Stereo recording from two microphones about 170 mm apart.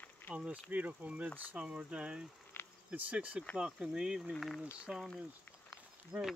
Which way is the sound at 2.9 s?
10° right (ahead or behind).